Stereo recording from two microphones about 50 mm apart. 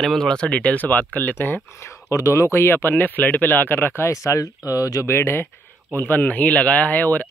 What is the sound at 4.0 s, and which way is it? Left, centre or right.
Speech, left.